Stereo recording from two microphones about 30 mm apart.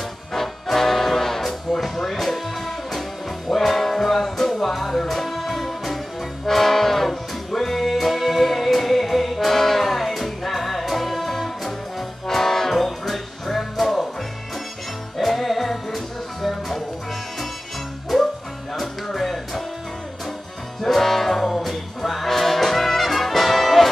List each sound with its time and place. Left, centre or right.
0.3 s music: centre
15.1 s music: centre
18.1 s music: centre
20.8 s music: centre